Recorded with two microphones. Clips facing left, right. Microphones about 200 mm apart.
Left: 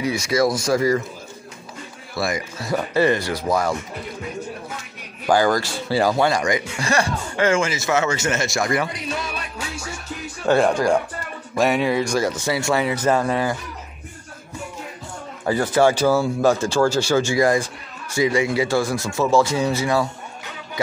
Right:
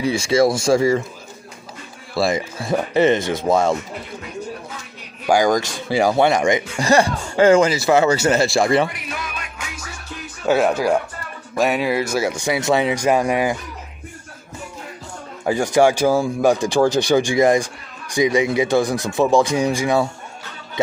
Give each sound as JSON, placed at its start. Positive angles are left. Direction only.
{"t": 0.0, "sound": "speech", "side_deg": -30}
{"t": 2.1, "sound": "speech", "side_deg": -30}
{"t": 5.2, "sound": "speech", "side_deg": -15}
{"t": 8.9, "sound": "music", "side_deg": 30}
{"t": 10.4, "sound": "speech", "side_deg": -5}
{"t": 15.4, "sound": "speech", "side_deg": -15}